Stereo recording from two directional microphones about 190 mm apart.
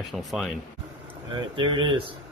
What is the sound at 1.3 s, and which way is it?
Speech, 25° right (ahead or behind).